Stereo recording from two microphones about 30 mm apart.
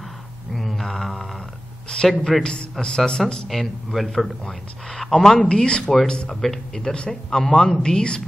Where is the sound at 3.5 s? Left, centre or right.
Centre.